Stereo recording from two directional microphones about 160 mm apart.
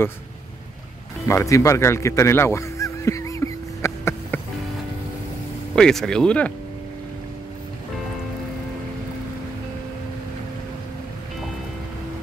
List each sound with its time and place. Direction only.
1.2 s music: 20° left (ahead or behind)
5.8 s speech: 5° left (ahead or behind)